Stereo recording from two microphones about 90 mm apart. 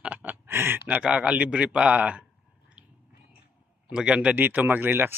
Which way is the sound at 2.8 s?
10° right (ahead or behind).